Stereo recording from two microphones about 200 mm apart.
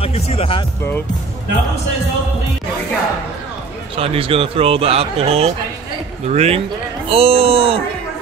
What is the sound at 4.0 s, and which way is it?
A man's voice, 30° right (ahead or behind).